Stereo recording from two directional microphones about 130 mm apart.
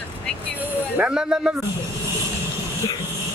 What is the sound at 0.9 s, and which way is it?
Speech, 10° right (ahead or behind).